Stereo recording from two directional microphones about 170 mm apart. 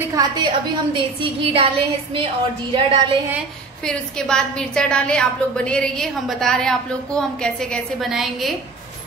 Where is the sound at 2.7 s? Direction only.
30° right (ahead or behind).